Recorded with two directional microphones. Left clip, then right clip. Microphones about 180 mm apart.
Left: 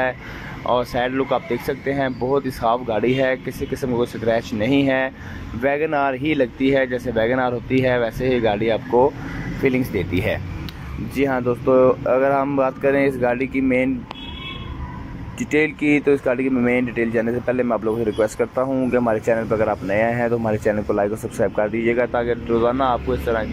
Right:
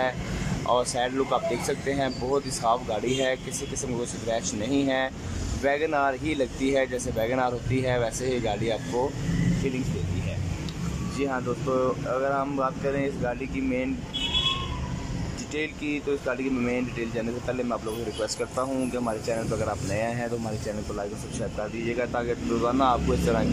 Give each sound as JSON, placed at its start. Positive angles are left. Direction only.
{"t": 0.7, "sound": "speech", "side_deg": 5}
{"t": 9.6, "sound": "speech", "side_deg": 15}
{"t": 11.1, "sound": "speech", "side_deg": 15}
{"t": 15.9, "sound": "speech", "side_deg": 10}
{"t": 21.8, "sound": "speech", "side_deg": 5}